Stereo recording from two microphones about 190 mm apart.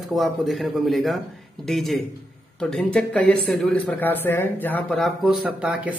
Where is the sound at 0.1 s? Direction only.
Centre (ahead or behind).